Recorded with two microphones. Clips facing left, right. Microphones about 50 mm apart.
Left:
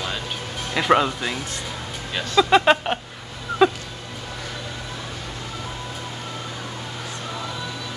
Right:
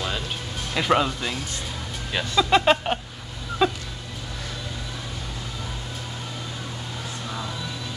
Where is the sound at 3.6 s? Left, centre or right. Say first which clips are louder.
Left 5 dB; centre.